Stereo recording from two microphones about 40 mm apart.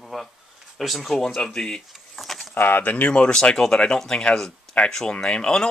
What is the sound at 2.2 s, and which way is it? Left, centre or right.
Keys jangling, centre.